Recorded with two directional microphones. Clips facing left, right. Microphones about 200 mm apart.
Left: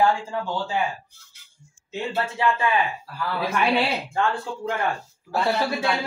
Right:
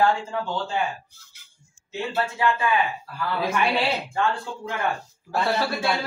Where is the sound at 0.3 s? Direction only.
10° left (ahead or behind).